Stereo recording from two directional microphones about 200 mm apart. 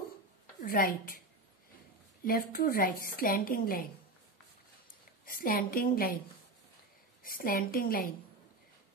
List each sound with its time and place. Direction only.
0.7 s a woman's voice: 45° left (ahead or behind)
2.2 s a woman's voice: 45° left (ahead or behind)
5.2 s a woman's voice: 45° left (ahead or behind)
7.2 s a woman's voice: 45° left (ahead or behind)